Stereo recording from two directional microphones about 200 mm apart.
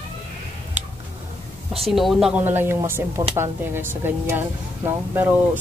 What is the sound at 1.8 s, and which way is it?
Speech, centre (ahead or behind).